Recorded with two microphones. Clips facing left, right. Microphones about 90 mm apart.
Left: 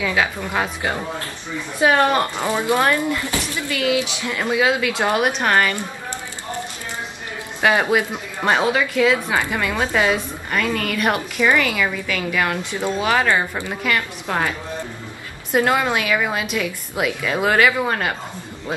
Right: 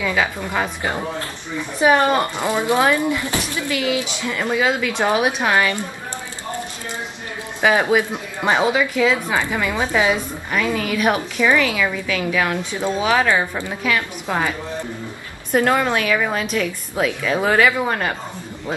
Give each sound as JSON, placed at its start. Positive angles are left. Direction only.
{"t": 0.0, "sound": "a woman's voice", "side_deg": 5}
{"t": 1.8, "sound": "speech", "side_deg": -15}
{"t": 3.3, "sound": "speech", "side_deg": -20}
{"t": 4.3, "sound": "a woman's voice", "side_deg": 10}
{"t": 7.6, "sound": "a woman's voice", "side_deg": 0}
{"t": 8.1, "sound": "a woman's voice", "side_deg": -10}
{"t": 14.2, "sound": "speech", "side_deg": -10}
{"t": 15.5, "sound": "a woman's voice", "side_deg": 10}